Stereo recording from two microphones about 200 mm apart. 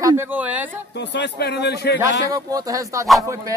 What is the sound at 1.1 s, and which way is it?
Speech, 60° left (ahead or behind).